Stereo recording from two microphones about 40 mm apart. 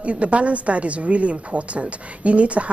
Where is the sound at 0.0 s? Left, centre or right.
Right.